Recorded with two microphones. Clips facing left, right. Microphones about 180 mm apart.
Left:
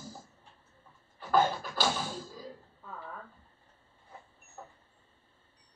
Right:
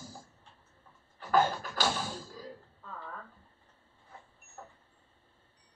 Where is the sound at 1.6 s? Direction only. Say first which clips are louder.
Left 1 dB; 10° left (ahead or behind).